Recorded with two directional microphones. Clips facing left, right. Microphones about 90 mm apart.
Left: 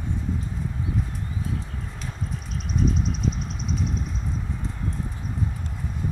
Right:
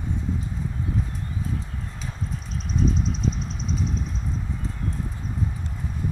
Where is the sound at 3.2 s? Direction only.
5° left (ahead or behind).